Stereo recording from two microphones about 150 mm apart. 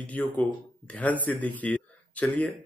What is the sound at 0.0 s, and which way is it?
A man's voice, 10° left (ahead or behind).